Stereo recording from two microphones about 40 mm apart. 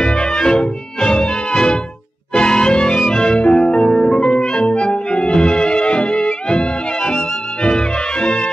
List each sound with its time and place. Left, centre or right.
0.0 s music: left